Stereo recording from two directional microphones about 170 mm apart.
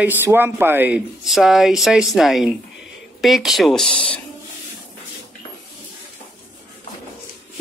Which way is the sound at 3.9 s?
30° left (ahead or behind).